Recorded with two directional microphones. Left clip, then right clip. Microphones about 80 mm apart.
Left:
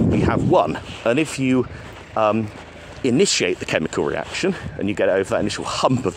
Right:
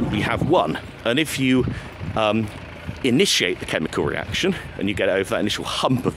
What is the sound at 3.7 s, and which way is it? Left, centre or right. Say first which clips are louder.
Speech: left 3 dB; left.